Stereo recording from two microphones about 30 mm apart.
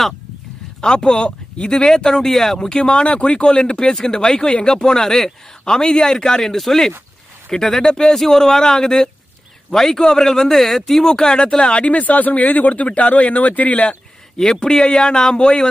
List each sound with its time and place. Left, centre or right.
0.7 s a man's voice: left
2.0 s a man's voice: centre
2.8 s speech: left
3.1 s speech: left
3.3 s a man's voice: left
6.4 s a man's voice: centre; by 9.1 s left
9.7 s a man's voice: centre
11.1 s a man's voice: left
11.3 s speech: left
14.4 s a man's voice: left